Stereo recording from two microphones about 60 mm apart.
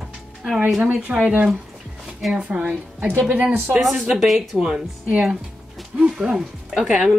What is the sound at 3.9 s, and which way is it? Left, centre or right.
Speech, centre.